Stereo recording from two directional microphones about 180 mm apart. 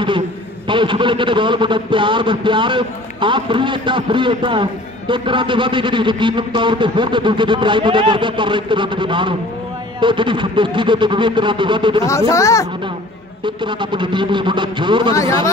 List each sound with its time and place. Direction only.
0.7 s a man's voice: 25° right (ahead or behind)
12.1 s speech: 15° left (ahead or behind)
13.7 s a man's voice: 25° right (ahead or behind)
15.1 s speech: 15° left (ahead or behind)